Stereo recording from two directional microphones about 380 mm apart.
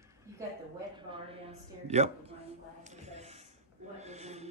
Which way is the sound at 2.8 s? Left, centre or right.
Centre.